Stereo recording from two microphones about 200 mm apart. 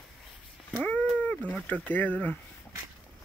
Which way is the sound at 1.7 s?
10° left (ahead or behind).